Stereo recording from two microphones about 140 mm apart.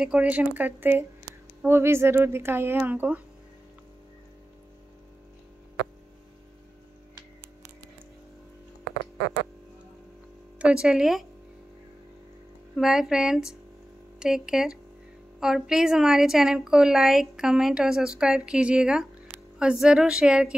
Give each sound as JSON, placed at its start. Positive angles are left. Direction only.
{"t": 0.0, "sound": "a woman's voice", "side_deg": -10}
{"t": 10.6, "sound": "a woman's voice", "side_deg": -5}
{"t": 12.7, "sound": "a woman's voice", "side_deg": -5}